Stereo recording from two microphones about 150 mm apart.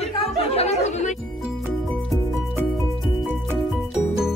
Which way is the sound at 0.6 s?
50° left (ahead or behind).